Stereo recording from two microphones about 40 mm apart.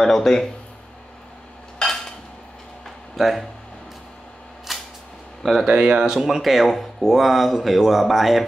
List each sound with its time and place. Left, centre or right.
0.0 s speech: centre
1.8 s dishes: centre
3.2 s speech: centre
4.7 s single-lens reflex camera: centre
5.4 s speech: centre
5.7 s speech: right
5.9 s speech: centre